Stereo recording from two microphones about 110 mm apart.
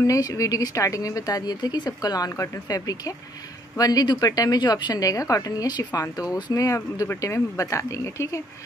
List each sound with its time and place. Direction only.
0.0 s a woman's voice: 30° left (ahead or behind)